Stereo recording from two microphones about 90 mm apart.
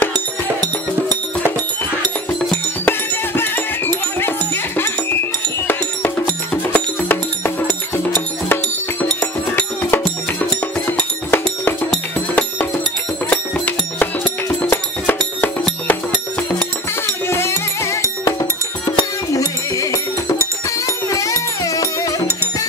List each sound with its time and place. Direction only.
0.1 s music: 45° right (ahead or behind)
2.8 s music: 25° left (ahead or behind)
9.2 s music: 25° left (ahead or behind)
13.3 s music: 15° left (ahead or behind)
17.0 s music: 30° left (ahead or behind)
18.9 s music: 40° left (ahead or behind)